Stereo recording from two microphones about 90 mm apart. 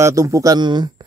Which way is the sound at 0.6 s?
55° right (ahead or behind).